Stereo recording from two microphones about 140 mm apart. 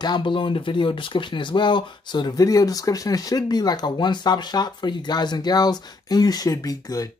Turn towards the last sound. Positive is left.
turn(degrees=25)  # may be behind; listen again after turning